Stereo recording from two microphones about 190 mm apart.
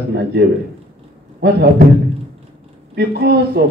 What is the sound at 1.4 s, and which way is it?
Speech, 60° right (ahead or behind).